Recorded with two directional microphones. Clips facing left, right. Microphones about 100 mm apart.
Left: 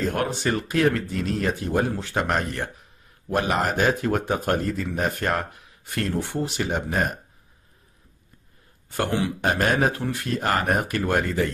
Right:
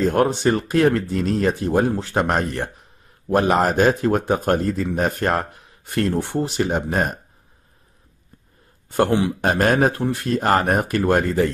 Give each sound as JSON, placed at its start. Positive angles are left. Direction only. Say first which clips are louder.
{"t": 0.1, "sound": "speech", "louder": "right 7 dB", "side_deg": -35}
{"t": 9.4, "sound": "speech", "louder": "right 3 dB", "side_deg": -40}